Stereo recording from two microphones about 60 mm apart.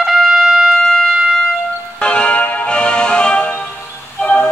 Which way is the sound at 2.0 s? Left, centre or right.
Centre.